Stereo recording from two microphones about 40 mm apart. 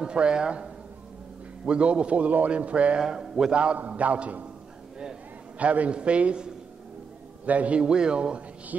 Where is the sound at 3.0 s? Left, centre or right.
Centre.